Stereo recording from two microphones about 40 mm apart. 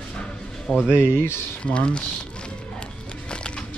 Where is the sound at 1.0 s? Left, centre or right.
Left.